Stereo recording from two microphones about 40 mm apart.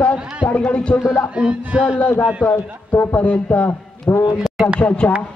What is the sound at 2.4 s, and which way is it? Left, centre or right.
Music, left.